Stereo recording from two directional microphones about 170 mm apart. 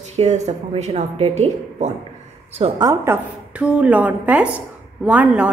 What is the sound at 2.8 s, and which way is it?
A woman's voice, 15° right (ahead or behind).